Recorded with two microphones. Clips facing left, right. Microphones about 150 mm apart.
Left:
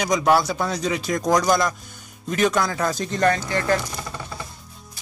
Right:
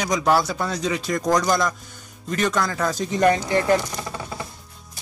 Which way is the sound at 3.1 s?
15° right (ahead or behind).